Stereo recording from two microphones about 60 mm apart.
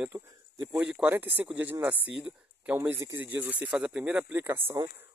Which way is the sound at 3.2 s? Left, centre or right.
Right.